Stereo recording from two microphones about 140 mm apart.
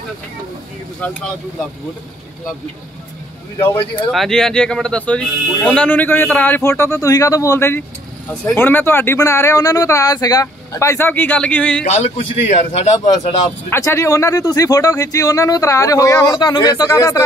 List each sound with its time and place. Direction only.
1.0 s speech: 10° left (ahead or behind)
4.1 s speech: centre (ahead or behind)
11.9 s a man's voice: 55° left (ahead or behind)
13.7 s speech: 20° left (ahead or behind)